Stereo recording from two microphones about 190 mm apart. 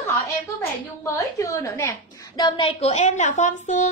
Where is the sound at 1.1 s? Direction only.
15° left (ahead or behind).